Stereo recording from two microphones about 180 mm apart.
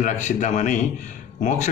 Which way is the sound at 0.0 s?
45° left (ahead or behind).